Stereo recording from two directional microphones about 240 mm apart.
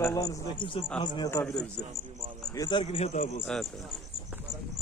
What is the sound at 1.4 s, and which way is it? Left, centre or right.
Speech, centre.